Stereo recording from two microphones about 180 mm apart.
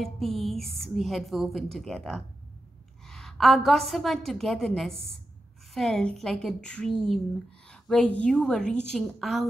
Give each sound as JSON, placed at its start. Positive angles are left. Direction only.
{"t": 0.0, "sound": "a woman's voice", "side_deg": 0}